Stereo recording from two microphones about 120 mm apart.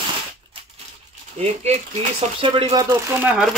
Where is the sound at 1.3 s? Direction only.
65° right (ahead or behind).